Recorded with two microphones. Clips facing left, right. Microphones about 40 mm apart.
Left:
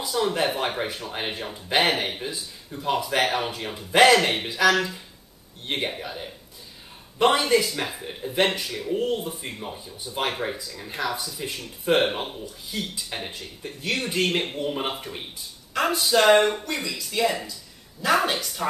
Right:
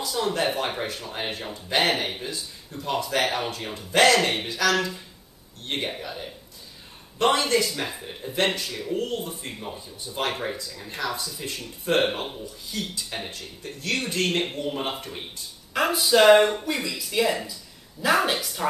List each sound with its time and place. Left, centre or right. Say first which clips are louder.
0.1 s speech: left 2 dB; centre
8.9 s speech: left 3 dB; centre